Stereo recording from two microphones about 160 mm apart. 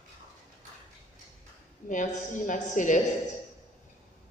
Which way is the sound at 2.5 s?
50° left (ahead or behind).